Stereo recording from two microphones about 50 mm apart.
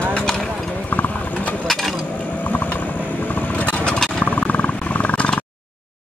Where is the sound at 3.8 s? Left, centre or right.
Centre.